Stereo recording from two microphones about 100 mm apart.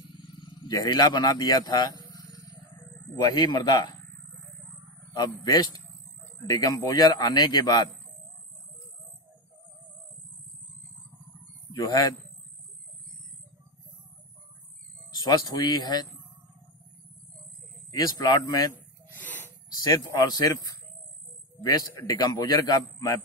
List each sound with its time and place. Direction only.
0.7 s a man's voice: 40° left (ahead or behind)
2.1 s wild animals: 35° left (ahead or behind)
3.2 s a man's voice: 45° left (ahead or behind)
5.4 s a man's voice: 45° left (ahead or behind)
11.7 s speech: 40° left (ahead or behind)
15.1 s a man's voice: 45° left (ahead or behind)
17.9 s a man's voice: 40° left (ahead or behind)
19.1 s a sound: 20° left (ahead or behind)
19.7 s a man's voice: 45° left (ahead or behind)
22.0 s a man's voice: 40° left (ahead or behind)